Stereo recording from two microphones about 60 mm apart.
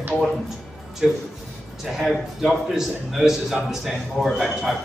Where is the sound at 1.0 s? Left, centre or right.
Centre.